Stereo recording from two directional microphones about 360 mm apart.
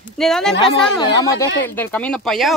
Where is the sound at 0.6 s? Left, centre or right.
Centre.